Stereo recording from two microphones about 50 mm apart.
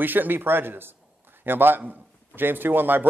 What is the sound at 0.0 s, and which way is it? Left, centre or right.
A man's voice, right.